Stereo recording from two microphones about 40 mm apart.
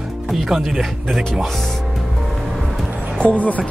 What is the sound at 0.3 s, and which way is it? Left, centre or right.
Speech, centre.